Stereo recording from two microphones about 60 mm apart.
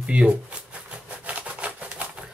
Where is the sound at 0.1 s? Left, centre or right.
Centre.